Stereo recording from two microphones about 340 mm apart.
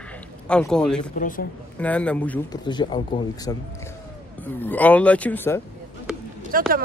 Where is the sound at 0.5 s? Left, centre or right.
Centre.